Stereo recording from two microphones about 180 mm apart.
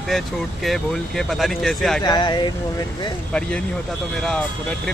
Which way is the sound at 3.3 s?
5° left (ahead or behind).